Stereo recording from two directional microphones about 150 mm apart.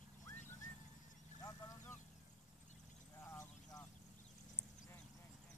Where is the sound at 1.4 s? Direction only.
25° left (ahead or behind).